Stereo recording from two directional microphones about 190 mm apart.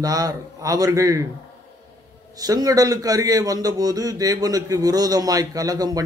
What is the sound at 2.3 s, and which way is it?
A man's voice, 20° right (ahead or behind).